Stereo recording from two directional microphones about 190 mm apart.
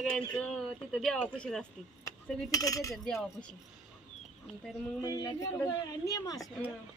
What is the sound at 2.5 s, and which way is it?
Speech, 20° left (ahead or behind).